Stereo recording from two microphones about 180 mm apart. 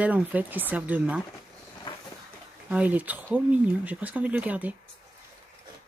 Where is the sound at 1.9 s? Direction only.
25° left (ahead or behind).